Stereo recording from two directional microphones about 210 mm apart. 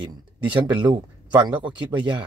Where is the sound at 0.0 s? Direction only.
20° right (ahead or behind).